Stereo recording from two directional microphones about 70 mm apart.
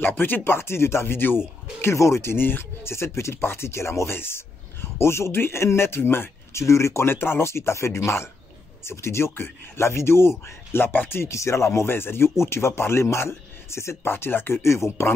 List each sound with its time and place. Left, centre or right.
0.0 s speech: left